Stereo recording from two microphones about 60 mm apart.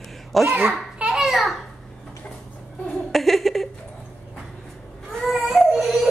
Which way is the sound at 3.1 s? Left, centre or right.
Centre.